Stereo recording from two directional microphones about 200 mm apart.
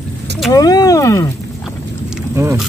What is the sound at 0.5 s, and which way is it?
Speech, 20° left (ahead or behind).